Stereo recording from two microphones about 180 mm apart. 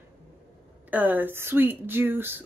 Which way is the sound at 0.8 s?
10° right (ahead or behind).